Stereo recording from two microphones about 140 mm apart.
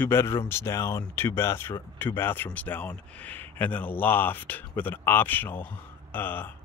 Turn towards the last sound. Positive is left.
turn(degrees=15)  # may be behind; listen again after turning